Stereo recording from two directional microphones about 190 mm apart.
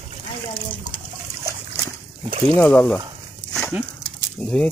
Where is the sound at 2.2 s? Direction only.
30° right (ahead or behind).